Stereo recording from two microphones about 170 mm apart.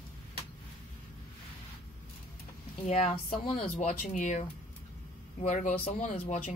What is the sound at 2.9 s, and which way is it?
Speech, 40° left (ahead or behind).